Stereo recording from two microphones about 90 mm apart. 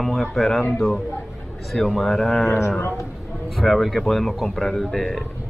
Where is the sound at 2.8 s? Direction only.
25° left (ahead or behind).